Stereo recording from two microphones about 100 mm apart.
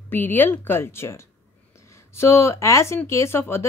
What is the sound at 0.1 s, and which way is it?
Speech, 20° left (ahead or behind).